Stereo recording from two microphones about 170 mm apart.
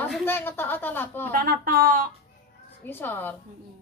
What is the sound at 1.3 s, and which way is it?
Speech, 55° right (ahead or behind).